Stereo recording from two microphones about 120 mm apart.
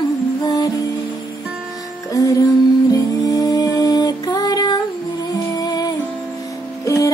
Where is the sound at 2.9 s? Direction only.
30° left (ahead or behind).